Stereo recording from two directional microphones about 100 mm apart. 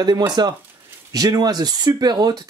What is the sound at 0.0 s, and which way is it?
Speech, 45° right (ahead or behind).